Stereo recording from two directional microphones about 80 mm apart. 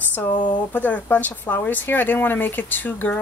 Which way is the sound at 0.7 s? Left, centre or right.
Left.